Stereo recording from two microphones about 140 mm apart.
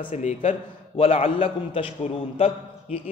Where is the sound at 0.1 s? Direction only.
60° left (ahead or behind).